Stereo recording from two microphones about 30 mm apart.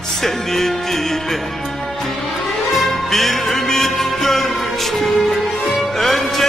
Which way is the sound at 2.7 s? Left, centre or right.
Centre.